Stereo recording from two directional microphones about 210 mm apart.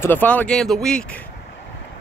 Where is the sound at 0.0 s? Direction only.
10° left (ahead or behind).